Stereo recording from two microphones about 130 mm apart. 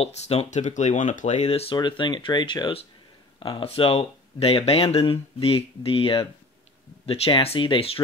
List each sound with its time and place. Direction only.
0.0 s speech: 55° left (ahead or behind)
1.8 s speech: 35° left (ahead or behind)